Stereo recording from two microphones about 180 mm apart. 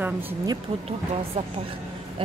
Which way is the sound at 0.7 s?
40° right (ahead or behind).